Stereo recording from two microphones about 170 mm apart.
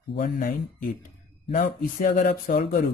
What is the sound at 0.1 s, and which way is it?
Speech, 60° left (ahead or behind).